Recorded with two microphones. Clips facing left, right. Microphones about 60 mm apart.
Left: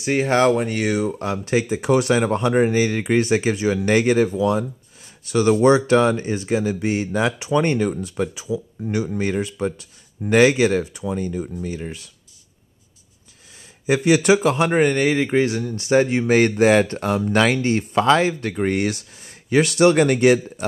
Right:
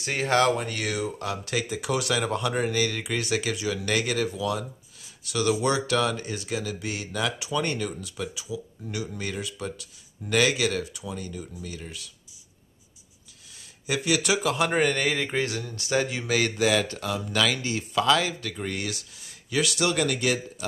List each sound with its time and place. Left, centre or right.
0.0 s speech: left
13.8 s speech: left
14.7 s speech: centre; by 20.3 s left